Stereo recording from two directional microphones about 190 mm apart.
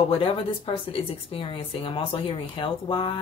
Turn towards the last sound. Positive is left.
turn(degrees=25)  # may be behind; listen again after turning